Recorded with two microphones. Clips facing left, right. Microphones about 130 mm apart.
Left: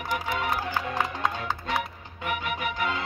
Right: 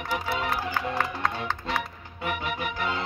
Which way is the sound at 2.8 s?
30° right (ahead or behind).